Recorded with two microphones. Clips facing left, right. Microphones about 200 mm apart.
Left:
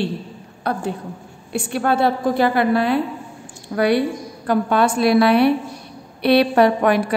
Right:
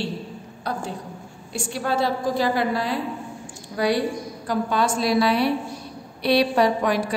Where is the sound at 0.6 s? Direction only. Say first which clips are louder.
Left 6 dB; 60° left (ahead or behind).